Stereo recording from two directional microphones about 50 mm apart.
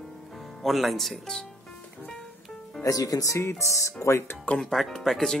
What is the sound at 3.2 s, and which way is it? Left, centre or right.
Speech, left.